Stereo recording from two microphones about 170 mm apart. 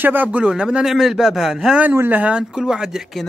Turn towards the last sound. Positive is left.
turn(degrees=0)  # may be behind; listen again after turning